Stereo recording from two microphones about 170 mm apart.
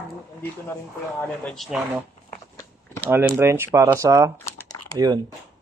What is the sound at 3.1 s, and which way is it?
Speech, 15° right (ahead or behind).